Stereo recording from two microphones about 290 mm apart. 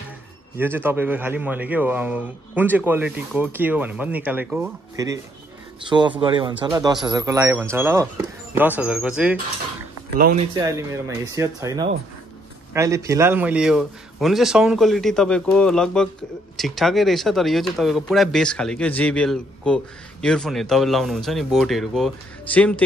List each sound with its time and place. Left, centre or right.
0.6 s a man's voice: centre
10.5 s a man's voice: centre